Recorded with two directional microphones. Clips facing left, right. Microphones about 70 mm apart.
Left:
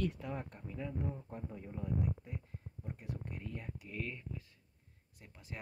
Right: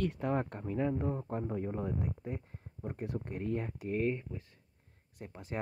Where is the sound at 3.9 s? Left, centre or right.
Right.